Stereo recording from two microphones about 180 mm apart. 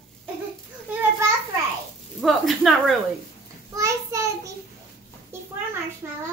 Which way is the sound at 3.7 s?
15° right (ahead or behind).